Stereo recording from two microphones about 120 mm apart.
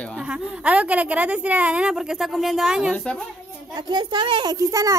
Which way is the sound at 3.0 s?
5° left (ahead or behind).